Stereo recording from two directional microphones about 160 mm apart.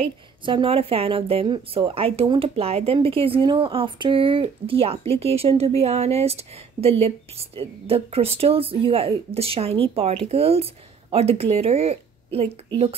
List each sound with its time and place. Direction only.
0.5 s speech: 35° right (ahead or behind)